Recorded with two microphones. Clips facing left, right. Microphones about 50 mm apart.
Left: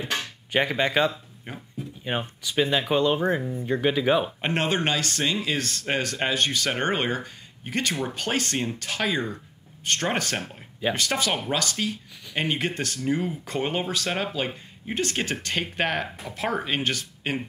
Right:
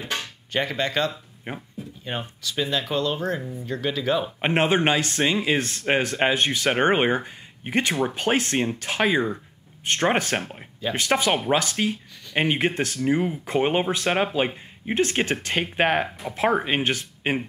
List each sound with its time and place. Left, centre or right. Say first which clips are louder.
0.5 s speech: left 2 dB; centre
1.5 s speech: right 5 dB; right
2.0 s speech: left 2 dB; centre
4.4 s speech: right 4 dB; centre